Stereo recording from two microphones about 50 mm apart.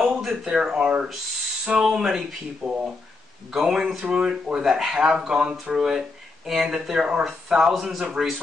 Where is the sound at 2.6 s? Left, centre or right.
Right.